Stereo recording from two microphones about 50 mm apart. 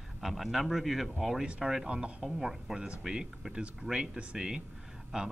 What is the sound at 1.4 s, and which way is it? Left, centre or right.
Speech, centre.